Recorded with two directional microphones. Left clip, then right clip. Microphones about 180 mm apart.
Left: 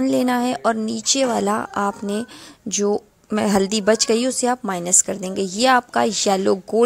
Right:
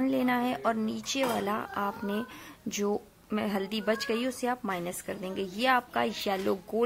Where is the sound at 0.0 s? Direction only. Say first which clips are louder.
Left 9 dB; 45° left (ahead or behind).